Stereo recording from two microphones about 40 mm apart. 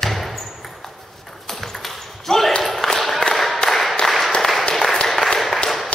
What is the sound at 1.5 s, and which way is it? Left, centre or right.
Ping, centre.